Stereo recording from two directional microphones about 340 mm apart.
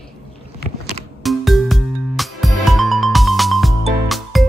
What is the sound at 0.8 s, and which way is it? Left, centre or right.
Music, centre.